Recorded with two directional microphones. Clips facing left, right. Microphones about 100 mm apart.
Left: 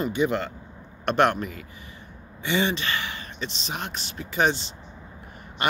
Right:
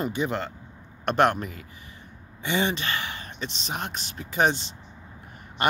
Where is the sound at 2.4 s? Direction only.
40° right (ahead or behind).